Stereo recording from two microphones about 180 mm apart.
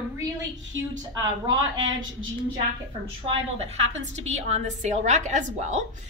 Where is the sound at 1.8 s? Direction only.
90° right.